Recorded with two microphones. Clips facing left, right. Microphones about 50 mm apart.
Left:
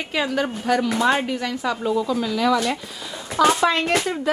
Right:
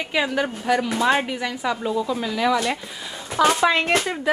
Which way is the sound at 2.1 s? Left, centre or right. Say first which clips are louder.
Left 1 dB; centre.